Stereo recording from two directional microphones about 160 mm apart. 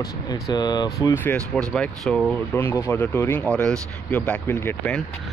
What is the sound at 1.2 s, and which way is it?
Speech, 5° left (ahead or behind).